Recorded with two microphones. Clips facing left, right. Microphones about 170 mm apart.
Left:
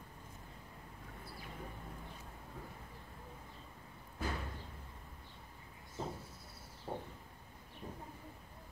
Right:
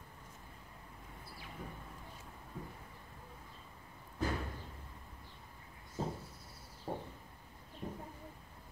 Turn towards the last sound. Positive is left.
turn(degrees=-30)  # may be behind; listen again after turning